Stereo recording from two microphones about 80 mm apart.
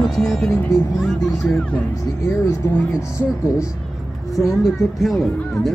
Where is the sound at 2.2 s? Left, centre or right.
Left.